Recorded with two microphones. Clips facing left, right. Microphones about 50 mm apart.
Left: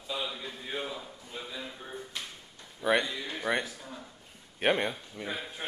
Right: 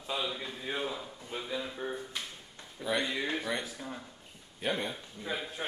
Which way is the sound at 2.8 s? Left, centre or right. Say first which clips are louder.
Left 5 dB; left.